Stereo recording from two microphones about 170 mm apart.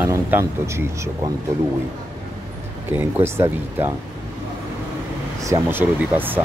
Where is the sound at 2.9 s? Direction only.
10° right (ahead or behind).